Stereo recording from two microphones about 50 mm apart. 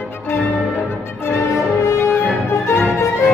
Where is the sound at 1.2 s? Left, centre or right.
Left.